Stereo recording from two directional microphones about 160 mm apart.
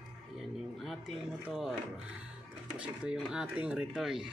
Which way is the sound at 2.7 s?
5° right (ahead or behind).